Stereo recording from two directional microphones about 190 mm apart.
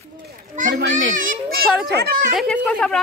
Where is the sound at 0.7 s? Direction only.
70° right (ahead or behind).